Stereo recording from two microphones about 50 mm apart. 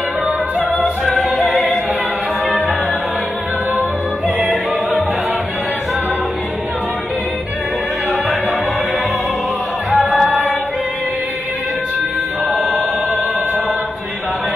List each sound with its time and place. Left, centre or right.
1.3 s opera: centre
4.4 s music: centre
9.8 s music: centre